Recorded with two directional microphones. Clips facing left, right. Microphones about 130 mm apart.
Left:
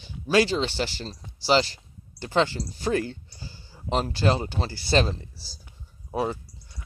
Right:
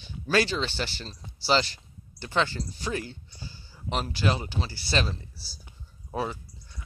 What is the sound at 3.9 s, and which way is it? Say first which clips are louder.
Speech: left 4 dB; 25° left (ahead or behind).